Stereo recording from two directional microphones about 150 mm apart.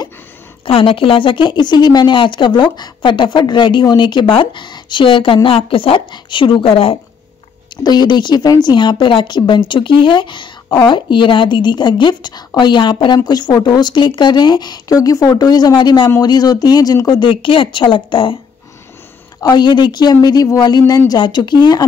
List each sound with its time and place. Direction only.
0.7 s speech: 40° left (ahead or behind)
7.7 s a woman's voice: 25° left (ahead or behind)
19.4 s a woman's voice: 30° left (ahead or behind)